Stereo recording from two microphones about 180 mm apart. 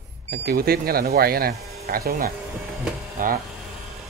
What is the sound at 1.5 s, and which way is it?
Speech, 35° right (ahead or behind).